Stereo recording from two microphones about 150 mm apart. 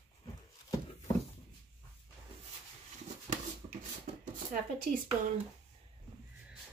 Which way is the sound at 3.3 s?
50° right (ahead or behind).